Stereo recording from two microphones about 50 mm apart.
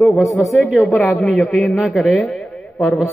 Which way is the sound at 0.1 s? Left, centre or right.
Left.